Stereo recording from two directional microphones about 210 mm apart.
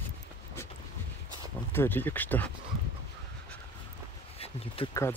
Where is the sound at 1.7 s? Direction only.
10° left (ahead or behind).